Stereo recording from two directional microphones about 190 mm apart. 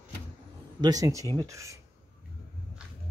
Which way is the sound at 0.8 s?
20° right (ahead or behind).